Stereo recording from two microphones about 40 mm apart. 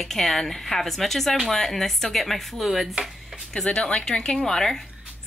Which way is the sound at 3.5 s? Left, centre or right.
Left.